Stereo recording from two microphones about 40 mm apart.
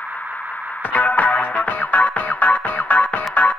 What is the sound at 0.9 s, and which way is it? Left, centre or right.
Music, left.